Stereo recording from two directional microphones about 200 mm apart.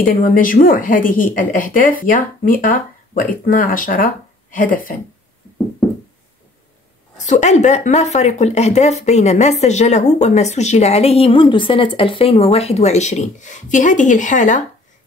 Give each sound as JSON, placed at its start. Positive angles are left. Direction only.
{"t": 0.0, "sound": "a woman's voice", "side_deg": 45}
{"t": 5.8, "sound": "a sound", "side_deg": 0}
{"t": 7.2, "sound": "speech", "side_deg": 35}